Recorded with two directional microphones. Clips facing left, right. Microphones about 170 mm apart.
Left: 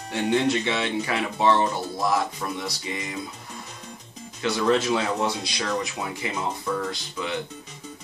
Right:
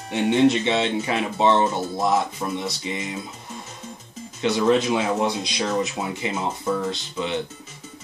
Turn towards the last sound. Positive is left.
turn(degrees=-25)  # may be behind; listen again after turning